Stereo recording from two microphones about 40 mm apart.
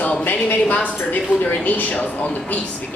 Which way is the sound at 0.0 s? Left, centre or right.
Left.